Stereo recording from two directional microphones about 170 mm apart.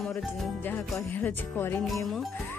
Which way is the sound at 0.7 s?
10° left (ahead or behind).